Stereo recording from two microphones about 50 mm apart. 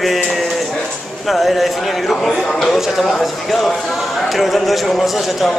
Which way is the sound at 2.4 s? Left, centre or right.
Centre.